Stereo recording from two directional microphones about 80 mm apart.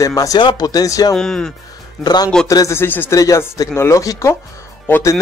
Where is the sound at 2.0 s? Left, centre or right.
Left.